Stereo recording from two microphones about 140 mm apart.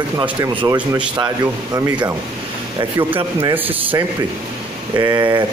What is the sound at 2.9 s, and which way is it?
Speech, 40° right (ahead or behind).